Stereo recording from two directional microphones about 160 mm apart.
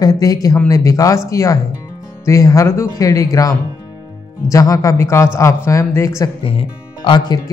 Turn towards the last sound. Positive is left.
turn(degrees=30)  # may be behind; listen again after turning